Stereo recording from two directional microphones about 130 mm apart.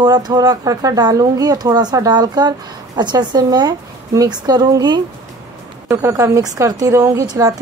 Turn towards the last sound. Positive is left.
turn(degrees=-25)  # may be behind; listen again after turning